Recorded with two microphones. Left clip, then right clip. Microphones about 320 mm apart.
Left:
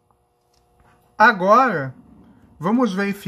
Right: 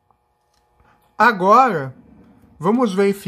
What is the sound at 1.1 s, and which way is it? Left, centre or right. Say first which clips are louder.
Speech: right 1 dB; centre.